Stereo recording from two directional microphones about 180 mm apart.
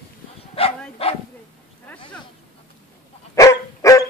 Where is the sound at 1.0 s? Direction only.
30° left (ahead or behind).